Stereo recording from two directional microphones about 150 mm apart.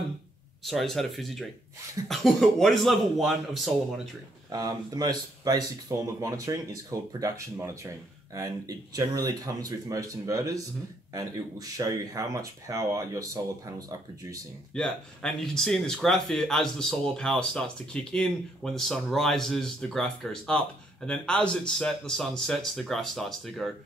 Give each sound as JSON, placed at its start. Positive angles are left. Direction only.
{"t": 0.7, "sound": "speech", "side_deg": 0}
{"t": 4.5, "sound": "speech", "side_deg": -25}
{"t": 14.7, "sound": "speech", "side_deg": 5}